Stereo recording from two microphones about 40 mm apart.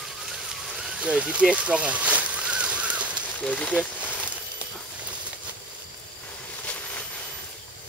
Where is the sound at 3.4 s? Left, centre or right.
Left.